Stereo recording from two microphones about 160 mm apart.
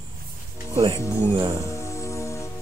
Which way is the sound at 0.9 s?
15° left (ahead or behind).